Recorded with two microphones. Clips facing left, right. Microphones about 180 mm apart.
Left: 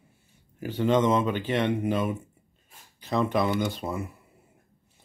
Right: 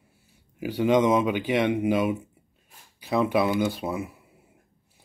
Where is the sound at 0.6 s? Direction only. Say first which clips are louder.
Right 2 dB; 10° right (ahead or behind).